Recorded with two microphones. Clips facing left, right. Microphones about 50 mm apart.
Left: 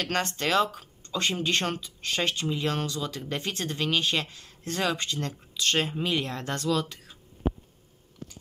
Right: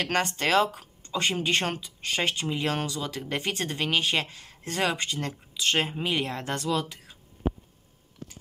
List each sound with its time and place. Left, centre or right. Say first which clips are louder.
0.0 s speech: right 2 dB; right